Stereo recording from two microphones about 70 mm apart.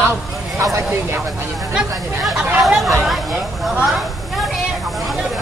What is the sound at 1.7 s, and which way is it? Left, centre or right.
Speech, centre.